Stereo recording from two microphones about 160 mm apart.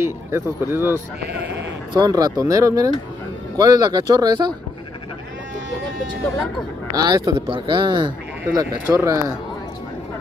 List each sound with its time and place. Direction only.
0.0 s speech: 15° right (ahead or behind)
6.9 s speech: 25° right (ahead or behind)